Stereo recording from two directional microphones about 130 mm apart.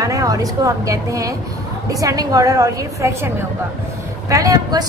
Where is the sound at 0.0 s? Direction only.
25° right (ahead or behind).